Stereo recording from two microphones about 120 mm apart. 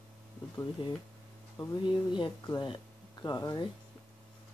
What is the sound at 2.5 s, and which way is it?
Speech, 40° left (ahead or behind).